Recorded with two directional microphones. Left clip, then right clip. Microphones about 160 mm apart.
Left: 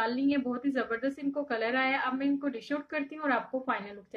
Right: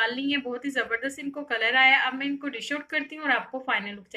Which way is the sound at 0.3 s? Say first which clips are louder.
Right 2 dB; 60° left (ahead or behind).